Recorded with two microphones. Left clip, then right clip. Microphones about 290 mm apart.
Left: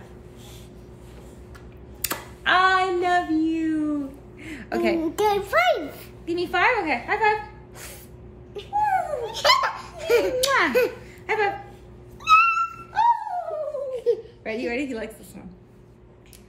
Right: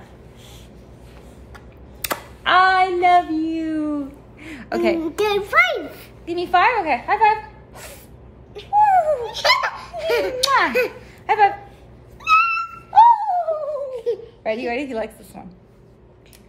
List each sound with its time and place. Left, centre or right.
2.0 s child singing: centre
4.4 s a sound: centre
5.0 s a child's voice: centre
6.2 s a woman's voice: centre
8.7 s a sound: centre
9.2 s laughter: centre
10.4 s a woman's voice: centre
11.2 s a sound: centre
12.2 s cat: centre
12.9 s music: centre
14.1 s a sound: centre
14.4 s a woman's voice: centre